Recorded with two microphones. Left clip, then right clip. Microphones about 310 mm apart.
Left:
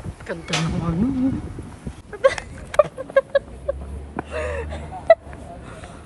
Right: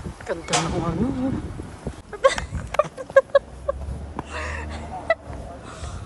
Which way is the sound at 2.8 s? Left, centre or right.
Centre.